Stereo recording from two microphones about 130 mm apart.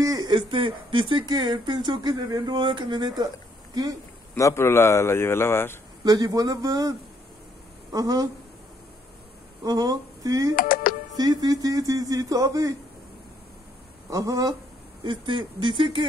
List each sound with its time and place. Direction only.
0.0 s speech: 30° right (ahead or behind)
4.4 s a man's voice: 20° left (ahead or behind)
6.0 s speech: 30° right (ahead or behind)
9.6 s speech: 30° right (ahead or behind)
10.5 s speech: 90° left
11.1 s speech: 30° right (ahead or behind)
14.1 s speech: 25° right (ahead or behind)
15.0 s speech: 35° right (ahead or behind)